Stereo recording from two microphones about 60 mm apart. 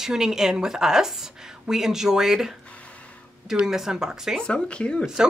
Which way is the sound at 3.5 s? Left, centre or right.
Centre.